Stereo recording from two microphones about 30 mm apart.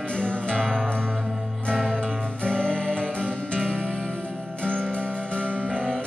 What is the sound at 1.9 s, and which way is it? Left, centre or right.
Music, left.